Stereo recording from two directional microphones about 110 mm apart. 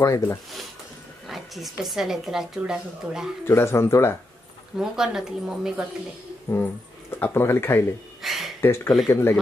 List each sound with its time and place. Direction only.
0.0 s speech: 25° left (ahead or behind)
1.2 s speech: centre (ahead or behind)
3.4 s speech: 25° left (ahead or behind)
4.7 s speech: 5° right (ahead or behind)
6.5 s speech: 25° left (ahead or behind)
8.2 s a sound: centre (ahead or behind)
8.5 s speech: 25° left (ahead or behind)